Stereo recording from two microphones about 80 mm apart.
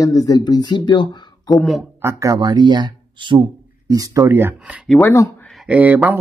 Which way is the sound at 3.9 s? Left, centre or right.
Right.